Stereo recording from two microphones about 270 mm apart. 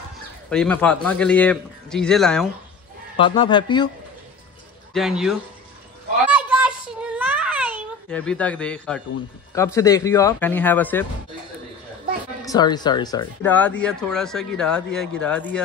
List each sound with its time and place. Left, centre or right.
0.5 s speech: centre
3.2 s speech: centre
4.9 s speech: centre
6.2 s a sound: centre
8.1 s speech: centre
12.4 s speech: centre